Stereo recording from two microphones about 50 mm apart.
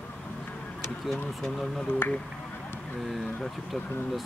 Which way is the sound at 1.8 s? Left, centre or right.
Left.